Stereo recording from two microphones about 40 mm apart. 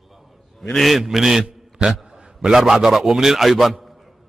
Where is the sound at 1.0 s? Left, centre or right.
Centre.